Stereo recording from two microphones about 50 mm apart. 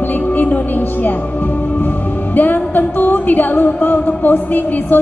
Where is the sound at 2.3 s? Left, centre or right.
Left.